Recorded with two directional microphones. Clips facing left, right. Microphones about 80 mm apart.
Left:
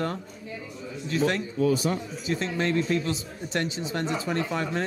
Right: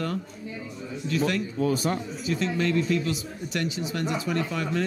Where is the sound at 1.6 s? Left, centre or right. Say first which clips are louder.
Left 2 dB; right.